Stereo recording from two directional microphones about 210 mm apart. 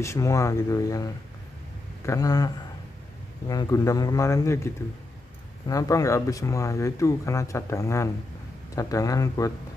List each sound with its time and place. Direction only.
0.0 s speech: 15° left (ahead or behind)
5.7 s speech: 15° left (ahead or behind)